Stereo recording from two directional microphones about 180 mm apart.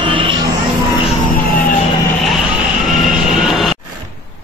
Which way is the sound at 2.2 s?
Centre (ahead or behind).